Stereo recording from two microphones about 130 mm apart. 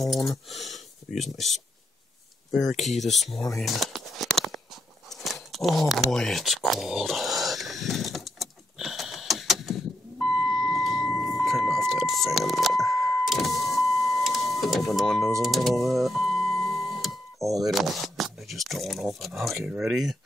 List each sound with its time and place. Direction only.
0.0 s speech: centre (ahead or behind)
2.7 s speech: centre (ahead or behind)
3.3 s speech: 25° left (ahead or behind)
3.6 s a sound: centre (ahead or behind)
10.3 s vehicle: centre (ahead or behind)
15.4 s music: centre (ahead or behind)
17.6 s speech: centre (ahead or behind)